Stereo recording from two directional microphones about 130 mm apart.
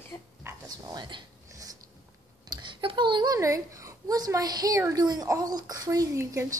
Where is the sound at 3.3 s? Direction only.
25° right (ahead or behind).